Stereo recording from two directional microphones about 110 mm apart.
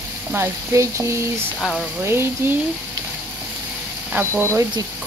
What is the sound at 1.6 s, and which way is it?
Speech, 5° left (ahead or behind).